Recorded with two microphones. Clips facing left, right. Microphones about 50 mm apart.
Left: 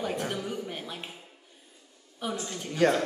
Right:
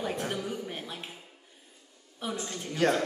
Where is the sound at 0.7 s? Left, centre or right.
Centre.